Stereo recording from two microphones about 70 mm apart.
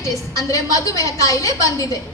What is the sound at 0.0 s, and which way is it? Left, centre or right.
A woman's voice, left.